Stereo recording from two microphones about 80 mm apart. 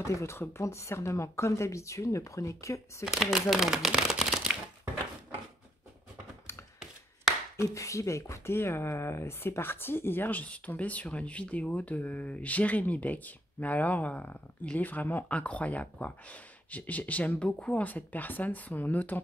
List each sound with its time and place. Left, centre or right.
0.0 s speech: left
3.1 s speech: centre
7.5 s speech: left